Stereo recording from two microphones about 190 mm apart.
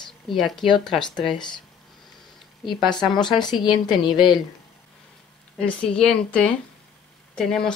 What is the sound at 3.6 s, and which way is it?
Speech, 25° left (ahead or behind).